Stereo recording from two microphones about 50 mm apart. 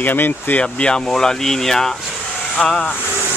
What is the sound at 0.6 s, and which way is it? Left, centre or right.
Speech, centre.